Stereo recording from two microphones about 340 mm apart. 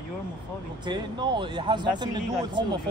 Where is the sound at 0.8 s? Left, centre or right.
Centre.